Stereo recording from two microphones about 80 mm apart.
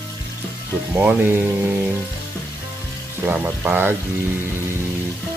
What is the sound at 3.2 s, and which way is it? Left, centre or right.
Speech, right.